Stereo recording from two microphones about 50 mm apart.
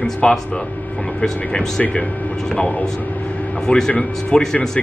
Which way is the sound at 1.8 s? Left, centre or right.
Left.